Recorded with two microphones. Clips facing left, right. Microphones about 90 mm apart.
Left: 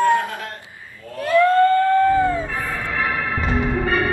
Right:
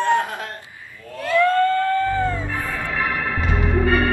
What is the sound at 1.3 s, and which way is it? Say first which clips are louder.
Music: left 3 dB; 20° left (ahead or behind).